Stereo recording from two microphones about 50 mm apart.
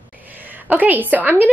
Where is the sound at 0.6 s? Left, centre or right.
Right.